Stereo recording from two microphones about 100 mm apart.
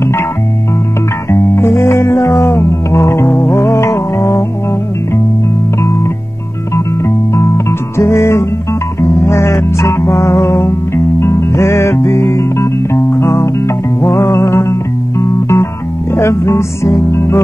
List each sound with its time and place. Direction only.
1.3 s music: 25° left (ahead or behind)
7.3 s music: 30° left (ahead or behind)